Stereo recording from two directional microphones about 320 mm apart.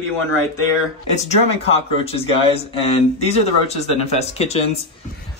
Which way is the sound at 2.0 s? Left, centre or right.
Centre.